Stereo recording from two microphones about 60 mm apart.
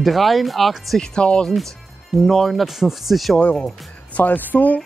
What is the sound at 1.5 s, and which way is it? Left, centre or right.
Speech, centre.